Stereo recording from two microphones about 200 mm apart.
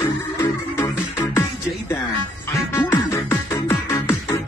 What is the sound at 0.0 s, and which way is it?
Music, 10° left (ahead or behind).